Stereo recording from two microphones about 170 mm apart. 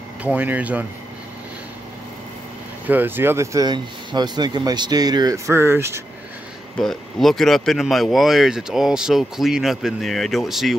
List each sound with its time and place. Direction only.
0.2 s speech: 10° right (ahead or behind)
2.9 s speech: 10° right (ahead or behind)
6.8 s speech: centre (ahead or behind)